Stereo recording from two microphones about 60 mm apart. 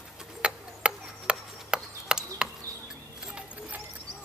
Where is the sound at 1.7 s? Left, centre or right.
Centre.